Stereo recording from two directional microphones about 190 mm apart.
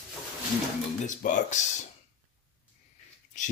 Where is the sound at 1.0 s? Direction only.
40° left (ahead or behind).